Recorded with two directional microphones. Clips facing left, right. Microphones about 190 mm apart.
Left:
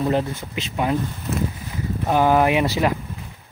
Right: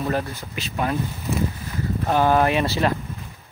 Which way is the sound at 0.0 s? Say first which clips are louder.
Left 4 dB; 20° left (ahead or behind).